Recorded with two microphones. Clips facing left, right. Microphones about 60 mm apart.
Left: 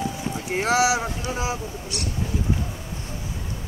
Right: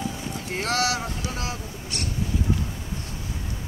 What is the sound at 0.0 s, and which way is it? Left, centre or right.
Clip-clop, centre.